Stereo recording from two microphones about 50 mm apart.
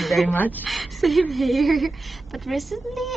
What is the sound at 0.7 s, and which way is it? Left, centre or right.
A woman's voice, centre.